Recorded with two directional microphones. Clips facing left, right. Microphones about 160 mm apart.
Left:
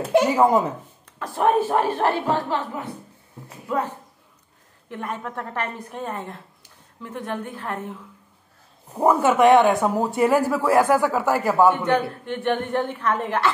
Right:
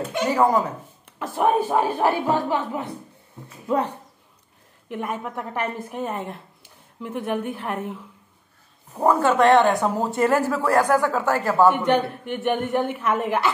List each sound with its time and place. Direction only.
0.4 s speech: 25° left (ahead or behind)
1.3 s speech: centre (ahead or behind)
2.0 s a woman's voice: 15° right (ahead or behind)
8.9 s speech: 10° left (ahead or behind)
11.7 s a woman's voice: 15° right (ahead or behind)